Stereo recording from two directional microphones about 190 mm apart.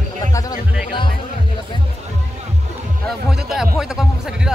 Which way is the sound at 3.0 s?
Centre (ahead or behind).